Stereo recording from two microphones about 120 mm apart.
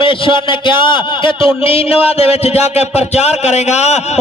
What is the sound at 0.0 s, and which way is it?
Speech, 45° left (ahead or behind).